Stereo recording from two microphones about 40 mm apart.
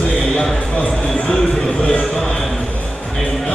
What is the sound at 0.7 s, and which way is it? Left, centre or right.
Speech, left.